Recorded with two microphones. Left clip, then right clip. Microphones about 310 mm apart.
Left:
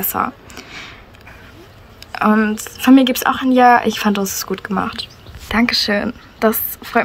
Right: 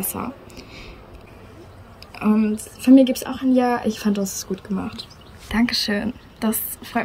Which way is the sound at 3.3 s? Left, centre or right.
Left.